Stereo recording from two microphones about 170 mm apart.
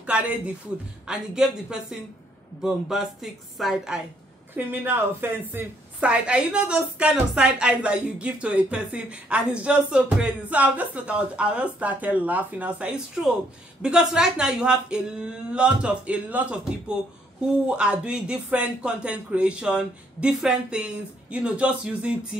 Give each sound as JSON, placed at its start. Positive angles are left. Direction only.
{"t": 0.0, "sound": "speech", "side_deg": -10}
{"t": 4.6, "sound": "a woman's voice", "side_deg": -10}